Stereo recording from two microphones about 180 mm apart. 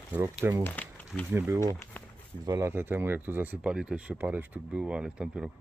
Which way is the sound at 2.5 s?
15° right (ahead or behind).